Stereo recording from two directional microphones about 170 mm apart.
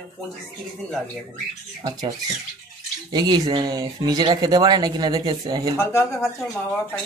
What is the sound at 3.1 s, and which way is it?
Speech, 25° right (ahead or behind).